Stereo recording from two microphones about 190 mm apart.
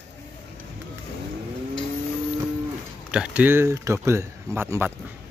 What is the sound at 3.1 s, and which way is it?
Speech, 5° right (ahead or behind).